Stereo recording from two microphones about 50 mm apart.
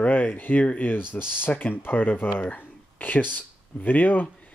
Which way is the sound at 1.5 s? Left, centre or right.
Left.